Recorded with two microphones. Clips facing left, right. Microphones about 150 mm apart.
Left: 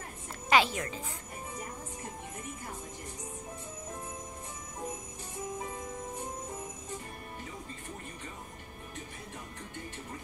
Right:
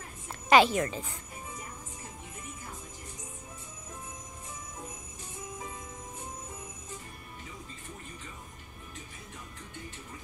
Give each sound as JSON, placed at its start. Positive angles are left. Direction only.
{"t": 0.5, "sound": "a woman's voice", "side_deg": -45}